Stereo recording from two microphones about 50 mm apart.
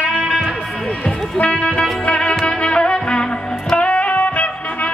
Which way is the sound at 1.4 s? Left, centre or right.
Left.